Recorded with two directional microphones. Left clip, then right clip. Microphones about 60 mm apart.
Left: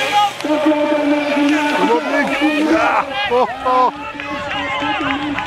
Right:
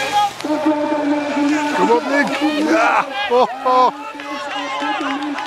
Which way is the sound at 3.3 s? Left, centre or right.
Right.